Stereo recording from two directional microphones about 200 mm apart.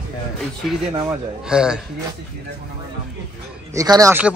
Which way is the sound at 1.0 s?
5° right (ahead or behind).